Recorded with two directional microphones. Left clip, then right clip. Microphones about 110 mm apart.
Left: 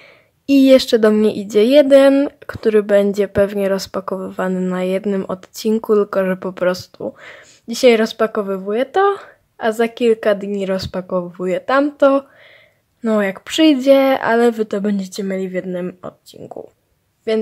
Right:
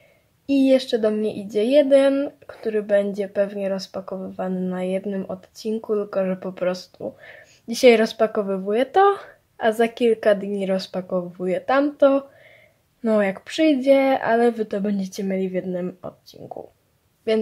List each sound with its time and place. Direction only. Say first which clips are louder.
0.5 s speech: left 7 dB; 40° left (ahead or behind)
7.2 s a woman's voice: left 6 dB; 20° left (ahead or behind)
13.4 s a woman's voice: left 6 dB; 30° left (ahead or behind)
17.3 s speech: left 3 dB; 5° left (ahead or behind)